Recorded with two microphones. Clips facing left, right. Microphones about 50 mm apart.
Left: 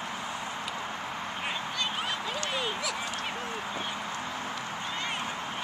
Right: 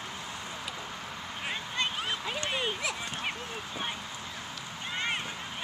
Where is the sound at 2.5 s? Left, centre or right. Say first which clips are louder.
Right 1 dB; right.